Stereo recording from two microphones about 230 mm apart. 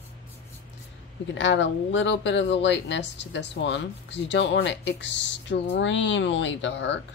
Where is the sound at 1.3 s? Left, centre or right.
Left.